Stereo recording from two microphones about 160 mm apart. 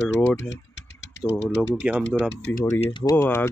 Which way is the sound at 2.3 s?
90° left.